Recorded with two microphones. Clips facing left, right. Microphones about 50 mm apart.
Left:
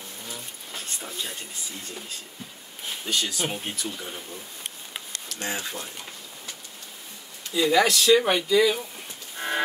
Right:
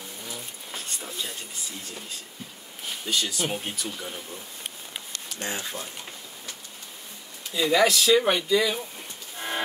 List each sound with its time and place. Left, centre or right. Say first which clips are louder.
0.3 s a sound: even; centre
3.1 s speech: even; centre
5.5 s speech: left 1 dB; centre
7.5 s speech: left 1 dB; centre